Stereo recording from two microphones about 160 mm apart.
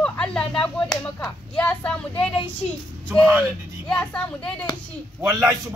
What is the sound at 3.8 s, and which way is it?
Speech, 5° left (ahead or behind).